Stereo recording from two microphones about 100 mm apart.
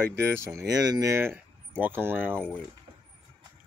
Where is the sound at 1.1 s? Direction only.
25° right (ahead or behind).